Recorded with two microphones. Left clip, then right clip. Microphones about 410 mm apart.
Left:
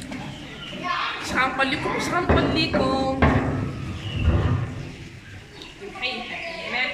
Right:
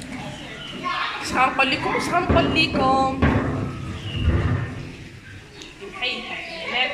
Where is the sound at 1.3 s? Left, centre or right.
Centre.